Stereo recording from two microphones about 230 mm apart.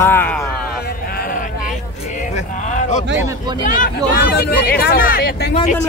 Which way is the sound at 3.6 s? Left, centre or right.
Left.